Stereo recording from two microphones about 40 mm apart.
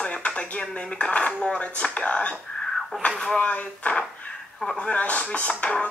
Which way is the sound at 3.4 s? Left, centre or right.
Left.